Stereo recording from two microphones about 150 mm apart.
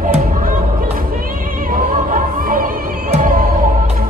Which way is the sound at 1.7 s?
65° right (ahead or behind).